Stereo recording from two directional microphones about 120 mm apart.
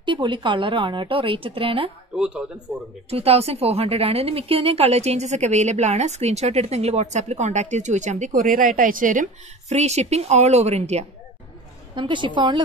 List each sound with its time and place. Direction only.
0.0 s a woman's voice: 40° right (ahead or behind)
2.1 s speech: 10° right (ahead or behind)
3.1 s a woman's voice: 55° right (ahead or behind)
11.9 s a woman's voice: 40° right (ahead or behind)